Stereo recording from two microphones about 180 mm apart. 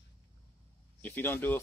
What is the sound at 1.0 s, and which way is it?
Speech, 10° left (ahead or behind).